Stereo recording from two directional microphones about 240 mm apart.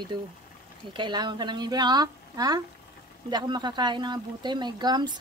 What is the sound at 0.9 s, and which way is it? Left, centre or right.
A woman's voice, centre.